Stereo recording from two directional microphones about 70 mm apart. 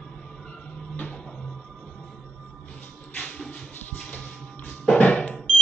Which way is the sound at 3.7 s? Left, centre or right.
Left.